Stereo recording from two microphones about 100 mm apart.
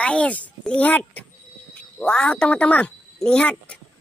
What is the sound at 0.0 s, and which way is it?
Speech, 10° left (ahead or behind).